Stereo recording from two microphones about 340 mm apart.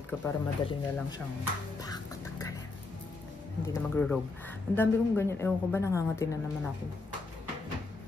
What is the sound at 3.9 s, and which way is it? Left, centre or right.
A woman's voice, centre.